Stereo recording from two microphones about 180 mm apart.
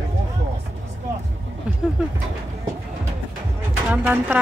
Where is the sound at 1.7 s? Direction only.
5° right (ahead or behind).